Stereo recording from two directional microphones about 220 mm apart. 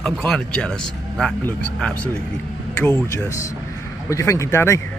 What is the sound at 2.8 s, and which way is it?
Speech, 15° left (ahead or behind).